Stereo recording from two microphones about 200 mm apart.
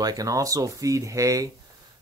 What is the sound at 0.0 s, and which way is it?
Speech, 15° right (ahead or behind).